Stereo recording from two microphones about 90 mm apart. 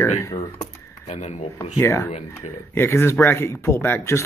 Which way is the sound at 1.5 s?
30° left (ahead or behind).